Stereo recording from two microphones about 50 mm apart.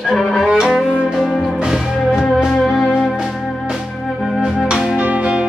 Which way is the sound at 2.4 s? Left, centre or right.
Centre.